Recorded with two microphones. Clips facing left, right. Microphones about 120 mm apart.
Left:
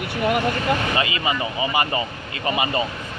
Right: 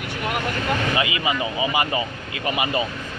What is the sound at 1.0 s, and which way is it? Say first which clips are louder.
Speech: even; 15° right (ahead or behind).